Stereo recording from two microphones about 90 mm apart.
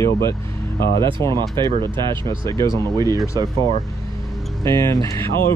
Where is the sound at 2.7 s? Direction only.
45° right (ahead or behind).